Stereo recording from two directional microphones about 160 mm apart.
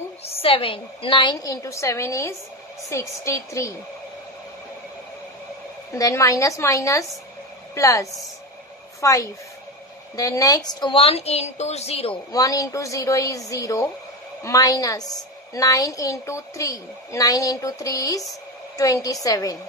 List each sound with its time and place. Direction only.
0.2 s a woman's voice: 35° left (ahead or behind); by 3.7 s 20° left (ahead or behind)
5.9 s a woman's voice: 20° left (ahead or behind); by 12.2 s 40° left (ahead or behind)
12.3 s a woman's voice: 20° left (ahead or behind)